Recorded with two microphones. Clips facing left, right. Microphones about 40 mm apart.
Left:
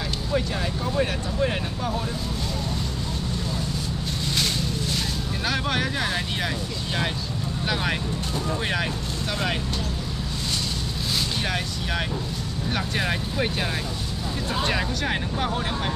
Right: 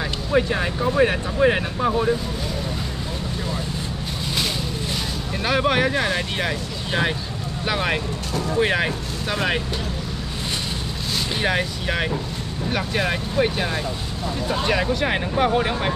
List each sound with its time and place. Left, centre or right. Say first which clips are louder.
0.3 s speech: right 6 dB; right
5.4 s speech: right 7 dB; centre
7.6 s speech: right 4 dB; centre
11.4 s speech: right 5 dB; centre